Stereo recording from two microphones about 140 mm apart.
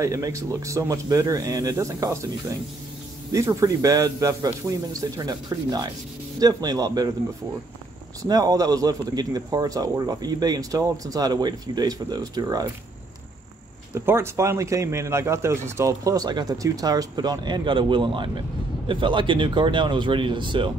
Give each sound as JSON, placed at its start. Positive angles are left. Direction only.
{"t": 0.0, "sound": "speech", "side_deg": -20}
{"t": 3.3, "sound": "speech", "side_deg": -20}
{"t": 8.3, "sound": "speech", "side_deg": -25}
{"t": 13.9, "sound": "speech", "side_deg": -20}